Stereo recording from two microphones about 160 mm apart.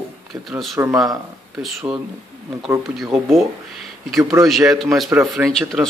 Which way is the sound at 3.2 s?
Centre (ahead or behind).